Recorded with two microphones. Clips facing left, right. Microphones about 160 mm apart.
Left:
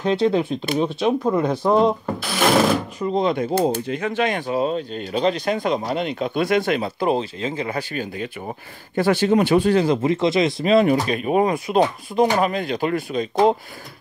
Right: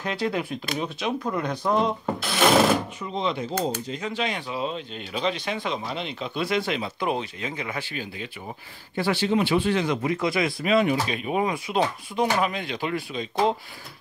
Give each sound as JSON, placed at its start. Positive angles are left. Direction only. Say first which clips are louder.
{"t": 0.0, "sound": "speech", "louder": "left 8 dB", "side_deg": 25}
{"t": 2.3, "sound": "a sound", "louder": "left 2 dB", "side_deg": 0}
{"t": 3.0, "sound": "speech", "louder": "left 7 dB", "side_deg": 45}
{"t": 7.0, "sound": "speech", "louder": "left 6 dB", "side_deg": 35}